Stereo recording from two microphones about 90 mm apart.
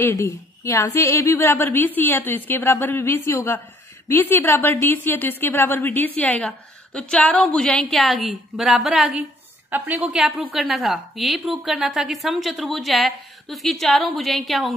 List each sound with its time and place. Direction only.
0.0 s a woman's voice: 35° left (ahead or behind)
3.3 s a woman's voice: 35° left (ahead or behind); by 9.1 s centre (ahead or behind)
9.7 s a woman's voice: 20° right (ahead or behind)
10.1 s a woman's voice: 5° right (ahead or behind)